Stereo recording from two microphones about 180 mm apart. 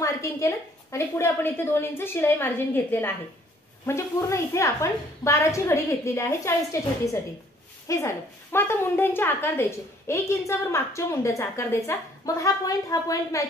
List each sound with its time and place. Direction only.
0.0 s a woman's voice: 15° left (ahead or behind)